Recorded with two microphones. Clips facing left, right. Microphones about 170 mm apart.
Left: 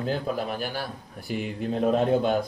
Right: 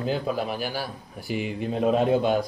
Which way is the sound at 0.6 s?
5° right (ahead or behind).